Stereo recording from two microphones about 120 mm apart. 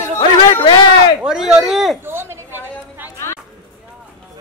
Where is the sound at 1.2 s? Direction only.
5° right (ahead or behind).